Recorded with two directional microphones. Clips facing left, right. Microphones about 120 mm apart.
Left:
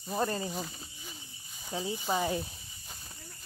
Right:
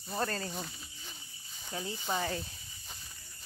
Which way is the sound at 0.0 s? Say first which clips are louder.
Left 3 dB; 10° left (ahead or behind).